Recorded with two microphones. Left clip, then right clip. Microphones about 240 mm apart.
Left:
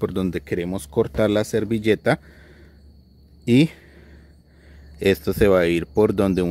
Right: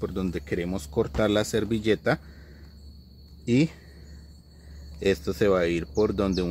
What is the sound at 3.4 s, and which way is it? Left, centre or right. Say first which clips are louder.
Speech: left 6 dB; left.